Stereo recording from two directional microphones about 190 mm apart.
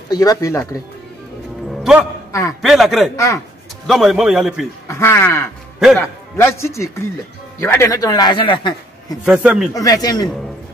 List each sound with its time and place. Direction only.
0.1 s speech: 20° left (ahead or behind)
1.8 s music: 5° right (ahead or behind)
2.6 s a man's voice: centre (ahead or behind)
4.8 s speech: 15° left (ahead or behind)
9.2 s a man's voice: 5° right (ahead or behind)
9.8 s speech: 20° left (ahead or behind)